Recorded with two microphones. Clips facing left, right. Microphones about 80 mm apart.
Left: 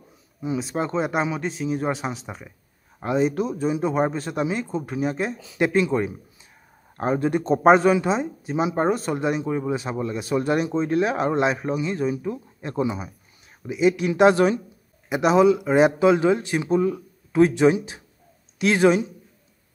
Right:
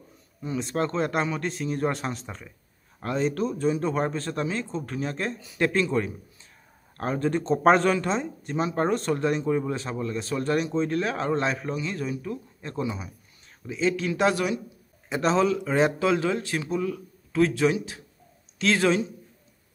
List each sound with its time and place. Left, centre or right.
0.4 s speech: centre
14.3 s speech: left
15.0 s speech: centre